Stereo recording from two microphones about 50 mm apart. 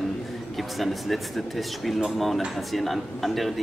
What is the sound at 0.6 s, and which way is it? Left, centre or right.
Speech, centre.